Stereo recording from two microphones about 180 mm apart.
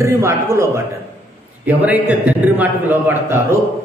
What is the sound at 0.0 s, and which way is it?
A man's voice, 15° right (ahead or behind).